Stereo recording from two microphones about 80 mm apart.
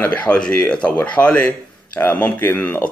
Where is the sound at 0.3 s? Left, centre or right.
Centre.